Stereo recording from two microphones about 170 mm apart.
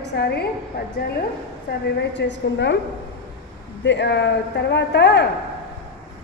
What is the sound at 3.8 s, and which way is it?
A woman's voice, 90° left.